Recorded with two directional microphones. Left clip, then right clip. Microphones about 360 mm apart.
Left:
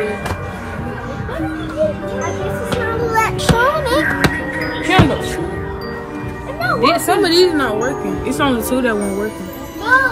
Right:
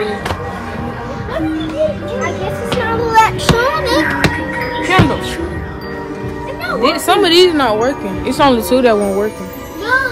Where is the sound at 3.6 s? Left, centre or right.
Centre.